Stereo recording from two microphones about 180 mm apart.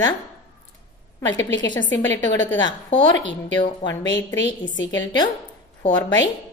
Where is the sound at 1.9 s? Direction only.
90° left.